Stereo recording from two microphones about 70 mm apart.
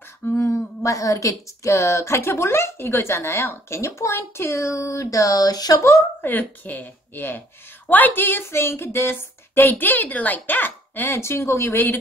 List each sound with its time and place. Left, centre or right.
0.3 s a sound: left
0.8 s a woman's voice: left
6.2 s a woman's voice: left